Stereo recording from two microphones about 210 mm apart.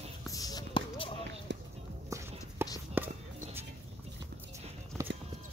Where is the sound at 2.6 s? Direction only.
10° right (ahead or behind).